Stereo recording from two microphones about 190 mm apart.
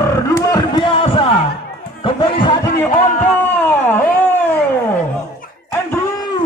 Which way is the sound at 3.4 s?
10° left (ahead or behind).